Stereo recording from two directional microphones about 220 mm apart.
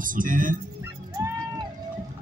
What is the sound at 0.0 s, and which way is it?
Speech, 40° right (ahead or behind).